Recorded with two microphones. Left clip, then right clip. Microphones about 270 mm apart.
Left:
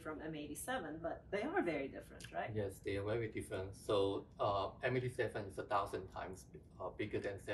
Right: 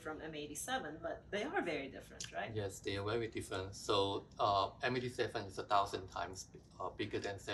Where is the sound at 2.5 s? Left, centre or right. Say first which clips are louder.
Even; centre.